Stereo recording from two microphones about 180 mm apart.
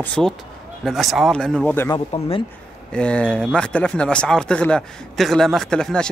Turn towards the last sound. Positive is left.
turn(degrees=5)  # may be behind; listen again after turning